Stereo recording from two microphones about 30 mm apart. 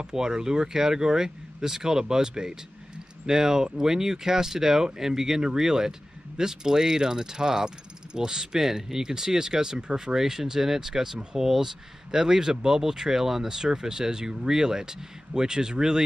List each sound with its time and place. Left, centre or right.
0.0 s speech: right